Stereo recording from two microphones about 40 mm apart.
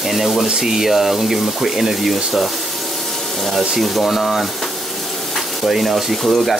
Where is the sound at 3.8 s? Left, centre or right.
Centre.